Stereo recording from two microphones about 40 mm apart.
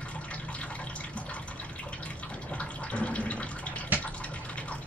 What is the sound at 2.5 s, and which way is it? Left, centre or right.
Water tap, left.